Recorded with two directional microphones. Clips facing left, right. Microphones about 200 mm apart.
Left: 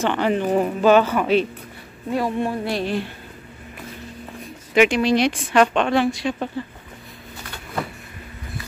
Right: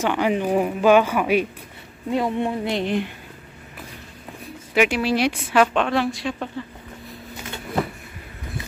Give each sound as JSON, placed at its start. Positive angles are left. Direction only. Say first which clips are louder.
{"t": 0.0, "sound": "a woman's voice", "louder": "left 1 dB", "side_deg": -10}
{"t": 4.7, "sound": "a woman's voice", "louder": "left 3 dB", "side_deg": -5}